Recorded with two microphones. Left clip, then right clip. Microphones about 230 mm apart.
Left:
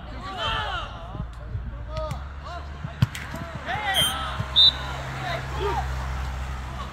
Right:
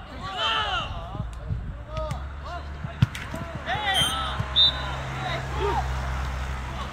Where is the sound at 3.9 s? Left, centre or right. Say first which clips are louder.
Even; left.